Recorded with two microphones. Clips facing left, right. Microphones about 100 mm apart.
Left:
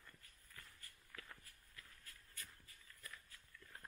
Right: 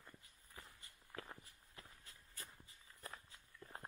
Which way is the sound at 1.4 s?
25° right (ahead or behind).